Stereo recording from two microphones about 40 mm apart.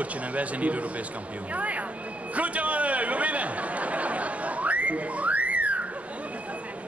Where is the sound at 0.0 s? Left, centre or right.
Right.